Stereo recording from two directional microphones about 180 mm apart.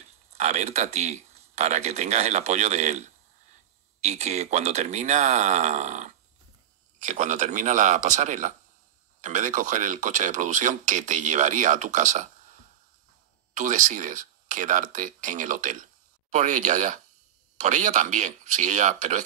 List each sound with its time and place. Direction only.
0.0 s speech: 40° right (ahead or behind)